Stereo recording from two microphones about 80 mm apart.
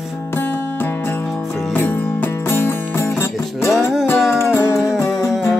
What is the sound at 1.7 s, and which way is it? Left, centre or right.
Music, left.